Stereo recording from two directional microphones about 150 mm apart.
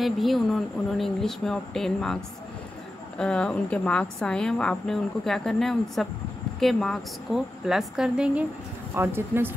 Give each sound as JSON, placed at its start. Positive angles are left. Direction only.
{"t": 0.0, "sound": "a woman's voice", "side_deg": 0}
{"t": 3.2, "sound": "a woman's voice", "side_deg": 5}
{"t": 8.9, "sound": "speech", "side_deg": -15}